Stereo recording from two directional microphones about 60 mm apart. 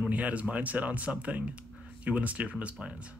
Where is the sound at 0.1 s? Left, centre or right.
Right.